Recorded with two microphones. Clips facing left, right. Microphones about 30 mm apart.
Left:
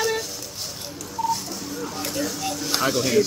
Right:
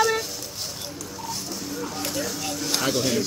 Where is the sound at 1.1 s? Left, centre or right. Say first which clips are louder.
Left 10 dB; centre.